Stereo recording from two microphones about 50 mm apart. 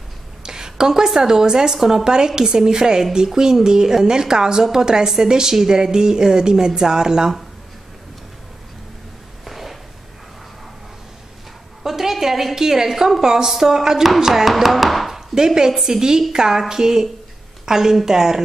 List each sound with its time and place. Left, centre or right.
0.4 s speech: centre
9.5 s a sound: centre
11.8 s a woman's voice: centre